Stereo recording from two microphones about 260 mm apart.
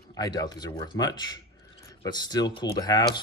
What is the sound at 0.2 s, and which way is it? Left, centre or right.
Speech, centre.